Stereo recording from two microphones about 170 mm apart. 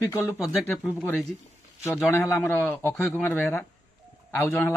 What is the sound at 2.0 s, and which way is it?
A man's voice, 15° left (ahead or behind).